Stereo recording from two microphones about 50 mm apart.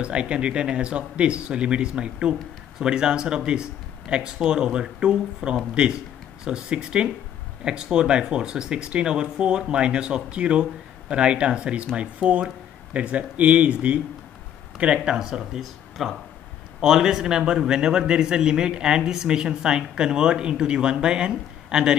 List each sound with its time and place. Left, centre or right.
0.0 s a man's voice: right
15.1 s a man's voice: centre